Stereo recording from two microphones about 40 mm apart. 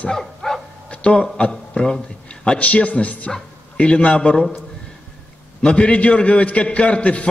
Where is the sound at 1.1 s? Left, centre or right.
Left.